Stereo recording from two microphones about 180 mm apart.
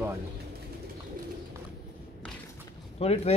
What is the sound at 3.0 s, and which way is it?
Speech, 35° left (ahead or behind).